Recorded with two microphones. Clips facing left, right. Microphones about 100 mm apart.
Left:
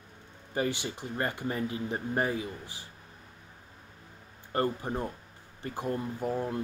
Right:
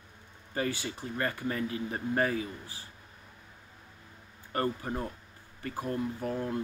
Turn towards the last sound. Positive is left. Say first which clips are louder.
# left 1 dB
turn(degrees=20)  # may be behind; listen again after turning